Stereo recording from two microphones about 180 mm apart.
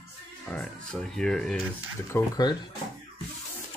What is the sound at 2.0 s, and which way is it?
Speech, 20° left (ahead or behind).